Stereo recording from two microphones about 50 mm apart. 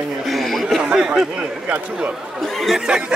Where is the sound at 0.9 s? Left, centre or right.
Centre.